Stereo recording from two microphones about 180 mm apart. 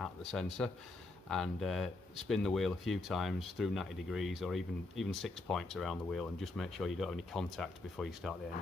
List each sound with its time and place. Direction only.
0.0 s speech: centre (ahead or behind)